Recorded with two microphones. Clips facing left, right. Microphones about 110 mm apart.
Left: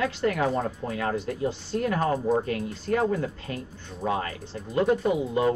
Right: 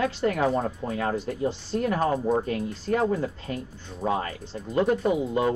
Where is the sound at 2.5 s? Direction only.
25° right (ahead or behind).